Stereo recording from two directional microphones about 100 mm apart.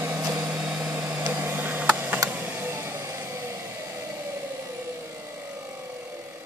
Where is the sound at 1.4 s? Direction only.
20° right (ahead or behind).